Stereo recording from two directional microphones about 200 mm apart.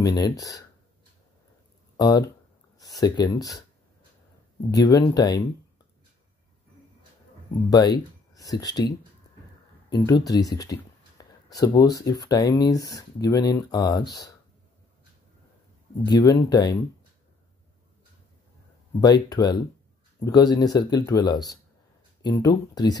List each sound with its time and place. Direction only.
0.0 s speech: 20° left (ahead or behind)
3.0 s speech: 20° left (ahead or behind)
4.6 s speech: 20° left (ahead or behind)
7.7 s speech: 20° left (ahead or behind)
10.0 s speech: 20° left (ahead or behind)
10.6 s a sound: 20° left (ahead or behind)
12.2 s speech: 20° left (ahead or behind)
16.1 s speech: 20° left (ahead or behind)
18.9 s speech: 20° left (ahead or behind)